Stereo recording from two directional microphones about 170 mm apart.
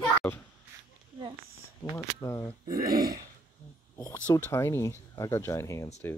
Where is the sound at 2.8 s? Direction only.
60° right (ahead or behind).